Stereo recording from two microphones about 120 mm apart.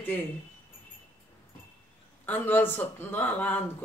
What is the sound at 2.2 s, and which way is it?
Speech, 15° left (ahead or behind).